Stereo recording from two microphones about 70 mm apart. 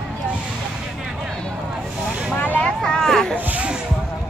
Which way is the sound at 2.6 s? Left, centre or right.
Centre.